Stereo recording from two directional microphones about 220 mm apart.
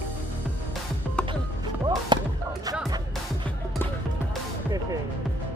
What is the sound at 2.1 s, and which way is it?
Music, 20° right (ahead or behind).